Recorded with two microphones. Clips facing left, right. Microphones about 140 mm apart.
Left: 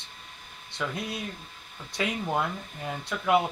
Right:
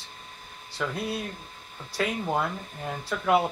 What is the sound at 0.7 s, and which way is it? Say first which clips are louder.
Speech: right 3 dB; centre (ahead or behind).